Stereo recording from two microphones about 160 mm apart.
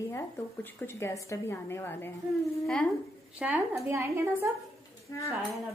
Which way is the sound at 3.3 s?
10° right (ahead or behind).